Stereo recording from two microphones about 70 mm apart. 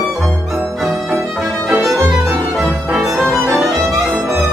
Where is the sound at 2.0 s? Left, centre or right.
Right.